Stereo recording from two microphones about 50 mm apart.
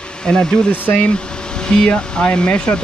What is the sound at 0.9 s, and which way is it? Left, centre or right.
Speech, left.